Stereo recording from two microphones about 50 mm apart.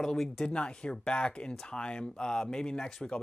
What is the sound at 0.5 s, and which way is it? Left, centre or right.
Speech, left.